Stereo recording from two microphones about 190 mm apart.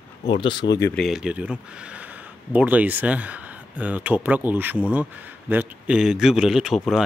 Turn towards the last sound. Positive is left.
turn(degrees=0)  # may be behind; listen again after turning